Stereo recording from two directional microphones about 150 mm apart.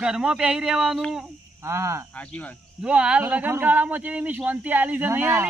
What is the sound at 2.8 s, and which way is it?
A man's voice, 5° right (ahead or behind).